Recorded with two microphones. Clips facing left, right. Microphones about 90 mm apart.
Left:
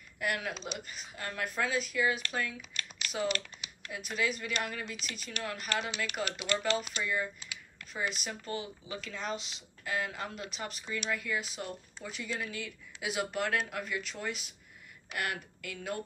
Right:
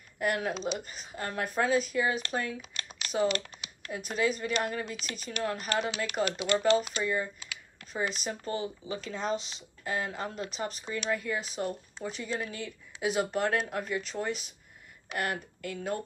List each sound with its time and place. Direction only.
0.2 s speech: 40° right (ahead or behind)
3.0 s typing: 30° right (ahead or behind)
3.9 s speech: 35° right (ahead or behind)